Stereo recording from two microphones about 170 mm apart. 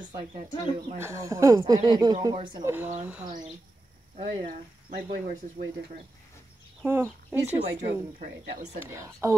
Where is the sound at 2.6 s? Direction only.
10° right (ahead or behind).